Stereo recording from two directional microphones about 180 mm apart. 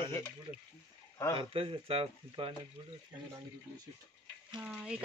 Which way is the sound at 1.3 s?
30° right (ahead or behind).